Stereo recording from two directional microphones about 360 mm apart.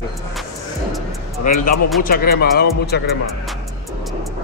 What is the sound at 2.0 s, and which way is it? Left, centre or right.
Speech, left.